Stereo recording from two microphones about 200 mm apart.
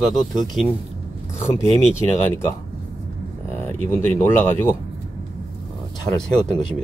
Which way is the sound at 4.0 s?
10° left (ahead or behind).